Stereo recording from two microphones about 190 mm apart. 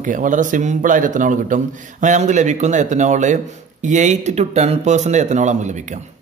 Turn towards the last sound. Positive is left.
turn(degrees=-40)  # may be behind; listen again after turning